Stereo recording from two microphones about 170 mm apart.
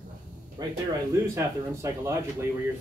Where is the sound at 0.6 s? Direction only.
25° right (ahead or behind).